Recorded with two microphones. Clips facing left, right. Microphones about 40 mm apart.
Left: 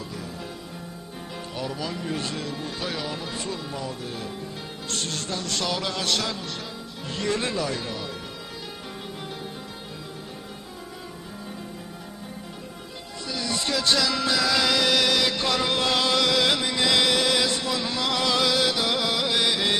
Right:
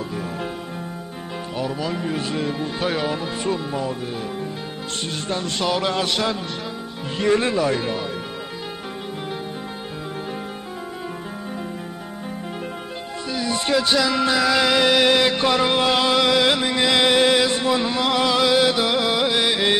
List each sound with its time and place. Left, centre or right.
1.6 s speech: centre
2.8 s speech: right
5.3 s speech: right
13.3 s music: right